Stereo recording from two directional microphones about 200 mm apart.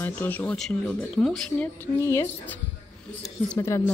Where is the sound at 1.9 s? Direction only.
15° left (ahead or behind).